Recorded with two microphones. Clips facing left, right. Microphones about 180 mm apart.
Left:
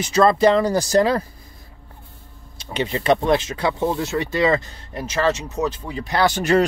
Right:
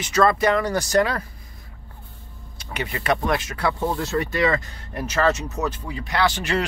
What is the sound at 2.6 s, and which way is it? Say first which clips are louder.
Speech: left 5 dB; 25° left (ahead or behind).